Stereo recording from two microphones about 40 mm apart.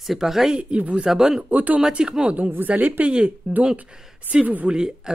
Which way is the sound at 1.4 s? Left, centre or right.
Right.